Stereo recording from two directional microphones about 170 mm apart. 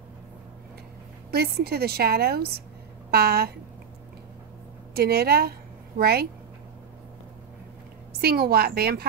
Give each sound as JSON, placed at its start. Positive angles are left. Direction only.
{"t": 1.3, "sound": "a woman's voice", "side_deg": -65}
{"t": 4.9, "sound": "a woman's voice", "side_deg": -65}
{"t": 8.2, "sound": "a woman's voice", "side_deg": -65}